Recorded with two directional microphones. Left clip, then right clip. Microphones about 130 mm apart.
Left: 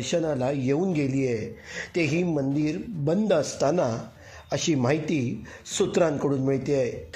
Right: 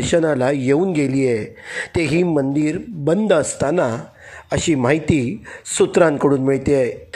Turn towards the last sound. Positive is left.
turn(degrees=-25)  # may be behind; listen again after turning